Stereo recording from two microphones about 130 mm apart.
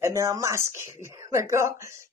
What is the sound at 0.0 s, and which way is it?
Speech, 25° right (ahead or behind).